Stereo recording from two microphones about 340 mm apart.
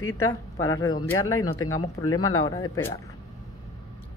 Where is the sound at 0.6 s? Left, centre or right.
Left.